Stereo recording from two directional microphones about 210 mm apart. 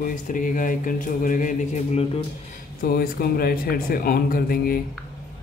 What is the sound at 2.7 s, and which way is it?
Speech, 45° left (ahead or behind).